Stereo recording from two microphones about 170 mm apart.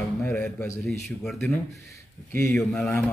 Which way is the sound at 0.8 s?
Centre (ahead or behind).